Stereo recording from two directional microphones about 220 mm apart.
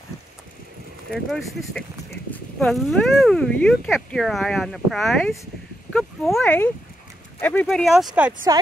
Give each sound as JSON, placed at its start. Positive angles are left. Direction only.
{"t": 1.1, "sound": "speech", "side_deg": 0}
{"t": 8.5, "sound": "a woman's voice", "side_deg": -15}